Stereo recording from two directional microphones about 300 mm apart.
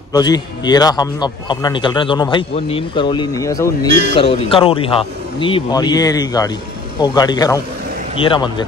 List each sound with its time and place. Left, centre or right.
0.1 s a man's voice: centre